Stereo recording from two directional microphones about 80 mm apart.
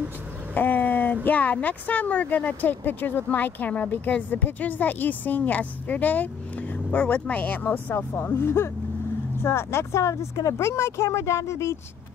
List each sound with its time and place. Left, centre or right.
0.6 s speech: left